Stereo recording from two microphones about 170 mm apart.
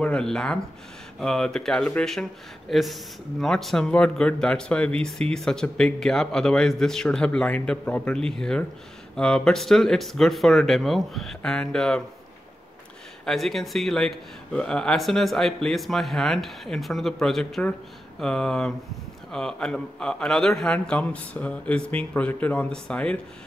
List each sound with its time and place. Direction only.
0.0 s speech: 5° left (ahead or behind)
13.2 s speech: centre (ahead or behind)